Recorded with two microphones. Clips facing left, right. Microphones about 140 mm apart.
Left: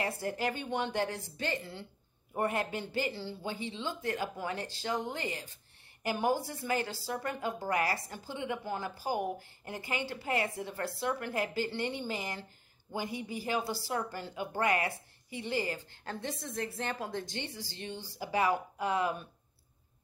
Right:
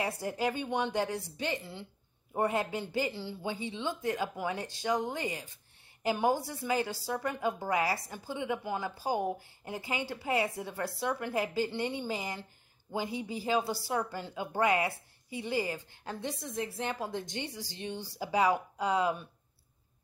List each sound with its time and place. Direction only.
0.0 s a woman's voice: 15° right (ahead or behind)